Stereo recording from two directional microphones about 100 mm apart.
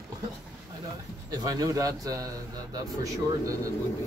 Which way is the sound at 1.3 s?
40° right (ahead or behind).